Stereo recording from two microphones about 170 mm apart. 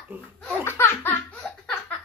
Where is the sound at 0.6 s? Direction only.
15° left (ahead or behind).